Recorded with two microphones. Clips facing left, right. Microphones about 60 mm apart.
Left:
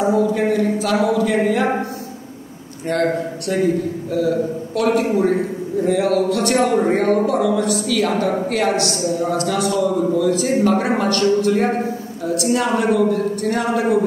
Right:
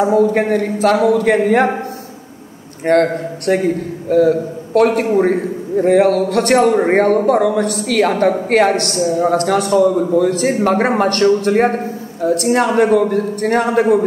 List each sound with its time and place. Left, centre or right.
0.0 s a man's voice: right
2.8 s a man's voice: right